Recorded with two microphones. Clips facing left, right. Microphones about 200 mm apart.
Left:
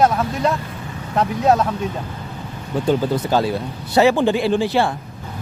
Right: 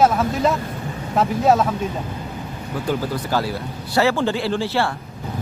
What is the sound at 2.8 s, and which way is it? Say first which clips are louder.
Speech: left 5 dB; 20° left (ahead or behind).